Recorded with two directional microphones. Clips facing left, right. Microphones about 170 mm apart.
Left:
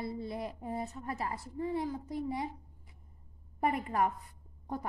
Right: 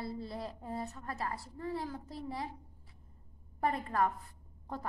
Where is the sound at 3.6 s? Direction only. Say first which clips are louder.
Left 1 dB; 20° left (ahead or behind).